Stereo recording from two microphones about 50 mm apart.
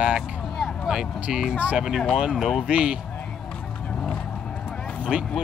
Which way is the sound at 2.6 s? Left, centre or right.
Right.